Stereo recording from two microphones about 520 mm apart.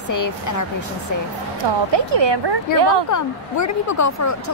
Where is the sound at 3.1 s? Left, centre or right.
Left.